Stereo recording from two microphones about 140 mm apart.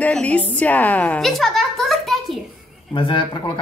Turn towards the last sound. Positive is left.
turn(degrees=35)  # may be behind; listen again after turning